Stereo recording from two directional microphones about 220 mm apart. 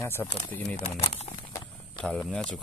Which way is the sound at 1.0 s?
30° left (ahead or behind).